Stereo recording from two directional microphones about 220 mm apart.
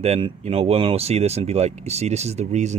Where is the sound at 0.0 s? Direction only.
30° right (ahead or behind).